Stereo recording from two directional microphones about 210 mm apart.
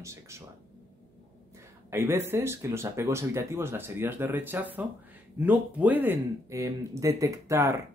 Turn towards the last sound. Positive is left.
turn(degrees=-15)  # may be behind; listen again after turning